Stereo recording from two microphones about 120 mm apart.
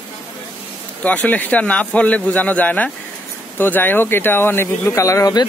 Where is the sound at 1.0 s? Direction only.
10° left (ahead or behind).